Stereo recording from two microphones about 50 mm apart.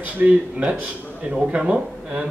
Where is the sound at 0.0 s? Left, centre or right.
Right.